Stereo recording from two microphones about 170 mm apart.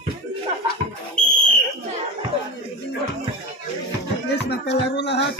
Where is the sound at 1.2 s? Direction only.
5° left (ahead or behind).